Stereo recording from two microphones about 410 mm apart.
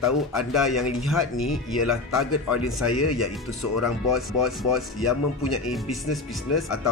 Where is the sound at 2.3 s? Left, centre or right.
Left.